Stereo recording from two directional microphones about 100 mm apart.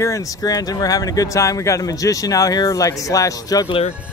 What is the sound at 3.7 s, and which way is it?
Speech, 70° left (ahead or behind).